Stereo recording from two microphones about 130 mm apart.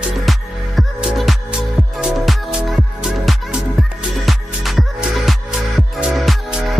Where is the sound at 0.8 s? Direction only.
5° right (ahead or behind).